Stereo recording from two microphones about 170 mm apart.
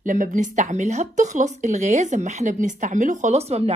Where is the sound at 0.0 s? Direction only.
50° right (ahead or behind).